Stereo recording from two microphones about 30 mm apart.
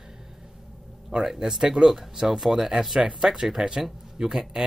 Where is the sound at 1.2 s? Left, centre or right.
Centre.